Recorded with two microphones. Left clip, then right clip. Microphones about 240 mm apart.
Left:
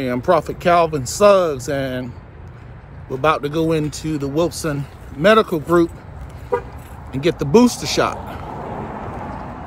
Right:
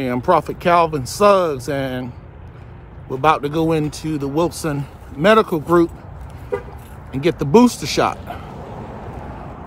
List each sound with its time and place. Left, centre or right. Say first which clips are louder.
0.0 s speech: even; centre
7.1 s speech: even; centre
8.6 s vehicle: left 5 dB; left